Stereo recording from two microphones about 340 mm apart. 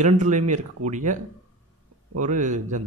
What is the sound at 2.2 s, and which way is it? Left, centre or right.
Speech, right.